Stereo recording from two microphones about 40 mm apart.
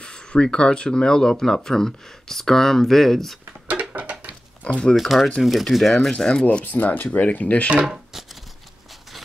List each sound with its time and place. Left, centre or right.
0.0 s speech: left; by 3.3 s centre
3.9 s a sound: right
4.6 s speech: left
4.9 s speech: centre
6.1 s speech: centre
6.6 s speech: left
7.8 s a sound: centre